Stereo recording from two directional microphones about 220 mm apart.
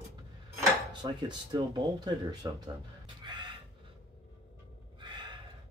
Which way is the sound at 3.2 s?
20° right (ahead or behind).